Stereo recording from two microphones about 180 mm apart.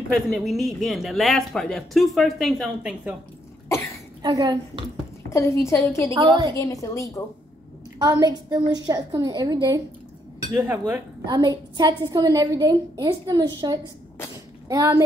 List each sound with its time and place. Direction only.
0.1 s speech: centre (ahead or behind)
4.2 s a woman's voice: 20° right (ahead or behind)
5.3 s a woman's voice: 15° left (ahead or behind)
6.1 s a woman's voice: 25° right (ahead or behind)
6.6 s a woman's voice: 15° left (ahead or behind)
8.0 s a woman's voice: 20° right (ahead or behind)
11.2 s a woman's voice: 25° right (ahead or behind)